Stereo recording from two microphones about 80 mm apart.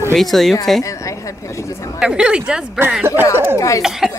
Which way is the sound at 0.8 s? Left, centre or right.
Left.